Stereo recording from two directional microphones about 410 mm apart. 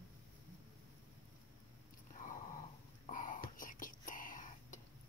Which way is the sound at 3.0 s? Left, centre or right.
Centre.